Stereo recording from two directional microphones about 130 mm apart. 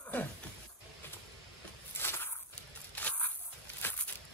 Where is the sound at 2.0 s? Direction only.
15° left (ahead or behind).